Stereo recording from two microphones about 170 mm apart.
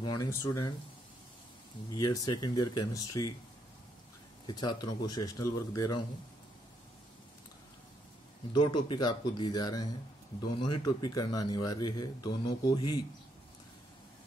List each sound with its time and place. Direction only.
0.0 s speech: 20° left (ahead or behind)
2.0 s speech: 25° left (ahead or behind)
4.5 s speech: 25° left (ahead or behind)
8.5 s speech: 25° left (ahead or behind)